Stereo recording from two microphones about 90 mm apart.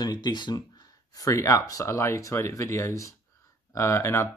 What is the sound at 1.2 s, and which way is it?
Speech, 35° left (ahead or behind).